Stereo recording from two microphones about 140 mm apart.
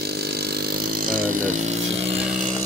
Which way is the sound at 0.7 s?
90° right.